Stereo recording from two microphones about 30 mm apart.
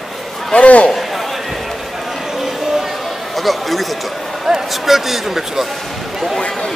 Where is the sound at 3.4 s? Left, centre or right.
Centre.